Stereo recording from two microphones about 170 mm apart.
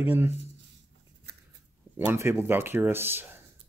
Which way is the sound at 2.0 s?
15° right (ahead or behind).